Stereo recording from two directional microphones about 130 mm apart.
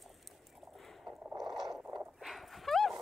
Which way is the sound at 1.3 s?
30° right (ahead or behind).